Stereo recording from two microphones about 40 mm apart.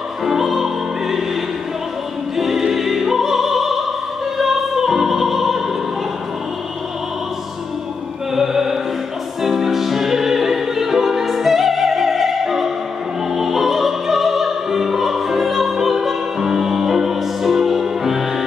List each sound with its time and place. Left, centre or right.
0.2 s music: centre
8.4 s music: centre
9.4 s opera: centre
13.3 s music: centre